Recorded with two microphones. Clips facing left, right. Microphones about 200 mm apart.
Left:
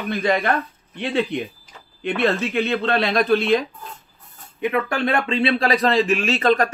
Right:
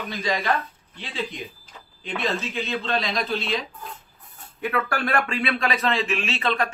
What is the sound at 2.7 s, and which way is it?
Speech, 60° left (ahead or behind).